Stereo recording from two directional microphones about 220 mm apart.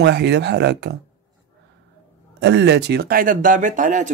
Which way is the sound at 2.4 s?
50° right (ahead or behind).